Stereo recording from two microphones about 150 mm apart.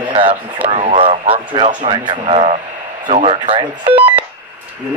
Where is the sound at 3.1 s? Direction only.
40° right (ahead or behind).